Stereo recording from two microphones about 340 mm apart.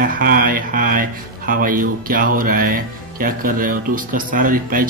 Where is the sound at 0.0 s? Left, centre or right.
Right.